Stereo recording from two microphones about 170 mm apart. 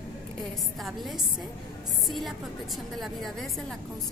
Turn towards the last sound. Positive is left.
turn(degrees=0)  # may be behind; listen again after turning